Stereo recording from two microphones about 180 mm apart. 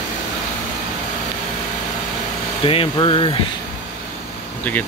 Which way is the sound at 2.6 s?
30° left (ahead or behind).